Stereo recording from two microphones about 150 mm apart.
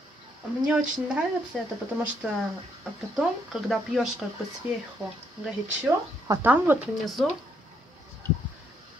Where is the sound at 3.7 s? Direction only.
Centre (ahead or behind).